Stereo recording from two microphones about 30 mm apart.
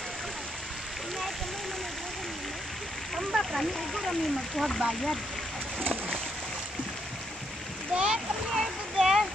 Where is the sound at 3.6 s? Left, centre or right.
Centre.